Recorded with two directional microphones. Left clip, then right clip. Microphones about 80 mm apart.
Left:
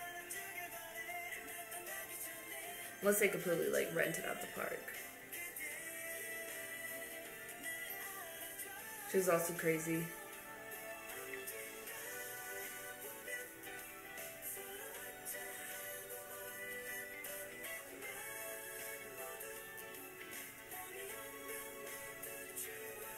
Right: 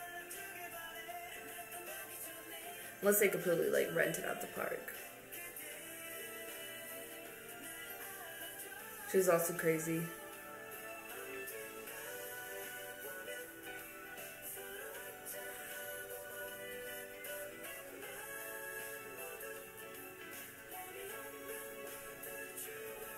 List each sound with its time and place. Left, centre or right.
3.0 s a man's voice: centre
9.1 s speech: centre
16.6 s music: left